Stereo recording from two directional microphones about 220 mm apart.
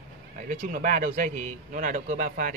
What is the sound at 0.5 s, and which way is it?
Speech, 35° right (ahead or behind).